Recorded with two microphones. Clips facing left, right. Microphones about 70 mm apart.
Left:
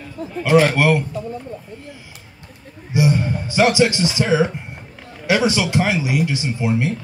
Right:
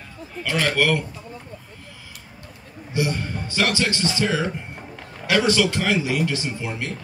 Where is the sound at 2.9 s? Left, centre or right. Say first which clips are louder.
Left 6 dB; centre.